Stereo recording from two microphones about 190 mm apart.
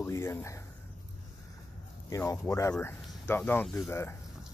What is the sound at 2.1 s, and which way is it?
Speech, 15° left (ahead or behind).